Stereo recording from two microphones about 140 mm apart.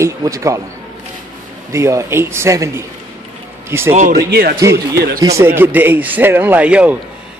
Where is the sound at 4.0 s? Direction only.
80° right.